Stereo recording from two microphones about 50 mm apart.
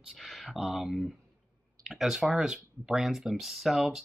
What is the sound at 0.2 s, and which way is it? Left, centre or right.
Speech, centre.